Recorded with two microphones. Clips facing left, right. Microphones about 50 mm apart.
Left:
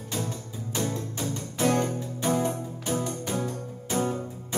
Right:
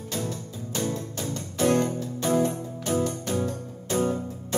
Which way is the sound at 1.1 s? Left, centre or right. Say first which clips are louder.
Even; centre.